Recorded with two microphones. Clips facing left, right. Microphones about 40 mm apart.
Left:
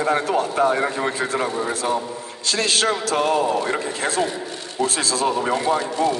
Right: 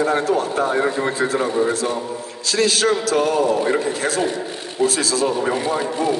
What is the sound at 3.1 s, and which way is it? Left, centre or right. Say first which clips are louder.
Speech: right 2 dB; left.